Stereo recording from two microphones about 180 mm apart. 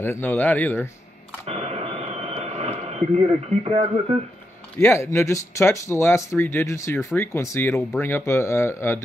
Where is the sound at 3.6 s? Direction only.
35° right (ahead or behind).